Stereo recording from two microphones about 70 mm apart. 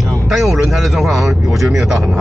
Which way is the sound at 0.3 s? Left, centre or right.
Centre.